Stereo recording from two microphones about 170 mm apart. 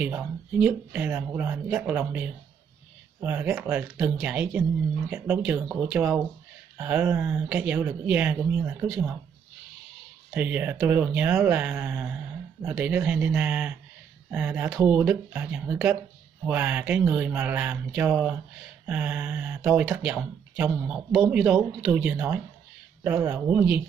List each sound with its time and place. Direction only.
0.0 s speech: 10° right (ahead or behind)
10.3 s speech: 10° right (ahead or behind)